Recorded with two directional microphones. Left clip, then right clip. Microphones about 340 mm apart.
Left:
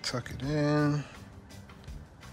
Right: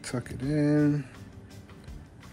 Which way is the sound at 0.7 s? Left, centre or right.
Left.